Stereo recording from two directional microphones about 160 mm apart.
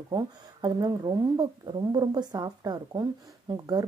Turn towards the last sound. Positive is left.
turn(degrees=-25)  # may be behind; listen again after turning